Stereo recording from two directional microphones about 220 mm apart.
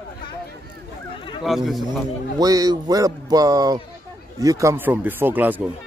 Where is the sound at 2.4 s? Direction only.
15° right (ahead or behind).